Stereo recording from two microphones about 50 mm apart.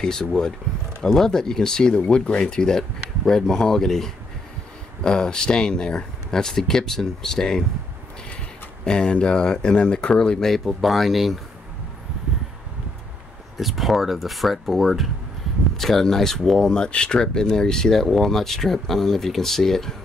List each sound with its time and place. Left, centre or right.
0.0 s speech: centre
8.8 s speech: centre
10.5 s speech: centre
13.6 s speech: centre